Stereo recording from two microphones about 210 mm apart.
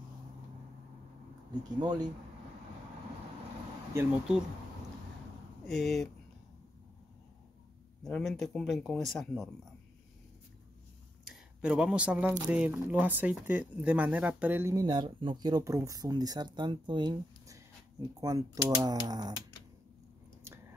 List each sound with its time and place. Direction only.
1.8 s speech: 20° right (ahead or behind)
3.9 s speech: 10° right (ahead or behind)
5.7 s speech: centre (ahead or behind)
8.0 s speech: centre (ahead or behind)
11.2 s speech: 5° right (ahead or behind); by 19.3 s 20° right (ahead or behind)